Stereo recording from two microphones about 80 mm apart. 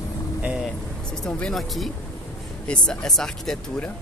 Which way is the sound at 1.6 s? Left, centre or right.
Centre.